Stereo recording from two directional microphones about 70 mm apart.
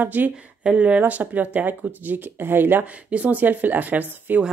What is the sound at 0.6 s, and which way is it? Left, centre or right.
Speech, centre.